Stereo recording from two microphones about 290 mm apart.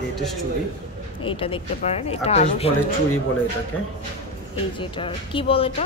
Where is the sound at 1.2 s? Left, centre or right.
Centre.